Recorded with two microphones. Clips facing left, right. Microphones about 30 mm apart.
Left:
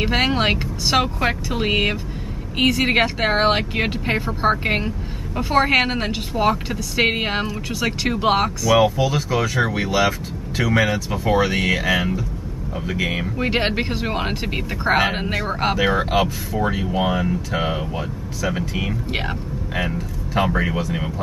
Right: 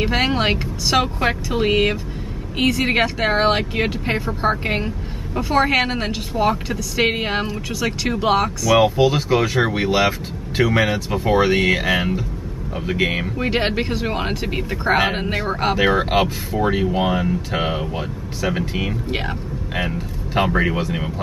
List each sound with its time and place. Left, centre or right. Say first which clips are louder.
0.0 s speech: even; centre
8.9 s speech: right 4 dB; right
13.4 s speech: even; centre
15.7 s speech: right 2 dB; centre
19.0 s speech: right 1 dB; centre
19.7 s speech: even; centre